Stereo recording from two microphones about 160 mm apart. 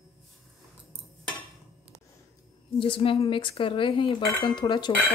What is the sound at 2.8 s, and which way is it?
A woman's voice, 35° left (ahead or behind).